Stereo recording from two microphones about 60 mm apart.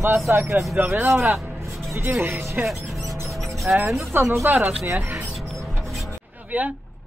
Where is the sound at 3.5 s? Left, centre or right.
Centre.